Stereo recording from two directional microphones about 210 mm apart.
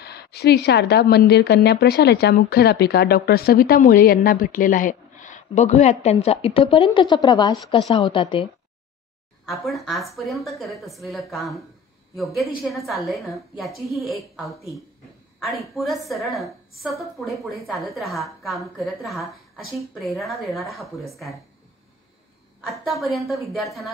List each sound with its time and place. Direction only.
0.0 s a woman's voice: 50° left (ahead or behind); by 8.5 s 25° left (ahead or behind)
9.7 s a woman's voice: centre (ahead or behind)
22.6 s a woman's voice: centre (ahead or behind)